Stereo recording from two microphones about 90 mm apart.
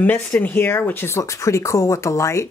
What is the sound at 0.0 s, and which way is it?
Speech, 20° left (ahead or behind).